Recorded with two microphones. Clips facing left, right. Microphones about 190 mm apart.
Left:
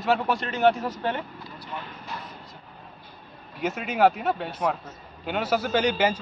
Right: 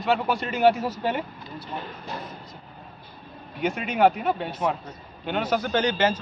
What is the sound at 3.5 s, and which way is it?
A man's voice, centre (ahead or behind).